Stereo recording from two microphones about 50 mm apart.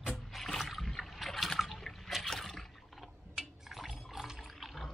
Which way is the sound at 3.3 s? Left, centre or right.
Centre.